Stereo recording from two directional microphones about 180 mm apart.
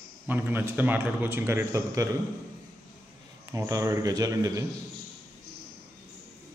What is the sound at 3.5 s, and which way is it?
A man's voice, 20° right (ahead or behind).